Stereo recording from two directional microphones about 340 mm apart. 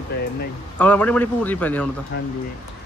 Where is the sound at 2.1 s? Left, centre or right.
Left.